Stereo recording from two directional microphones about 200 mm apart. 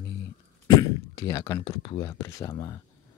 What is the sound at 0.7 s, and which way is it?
Speech, 15° left (ahead or behind).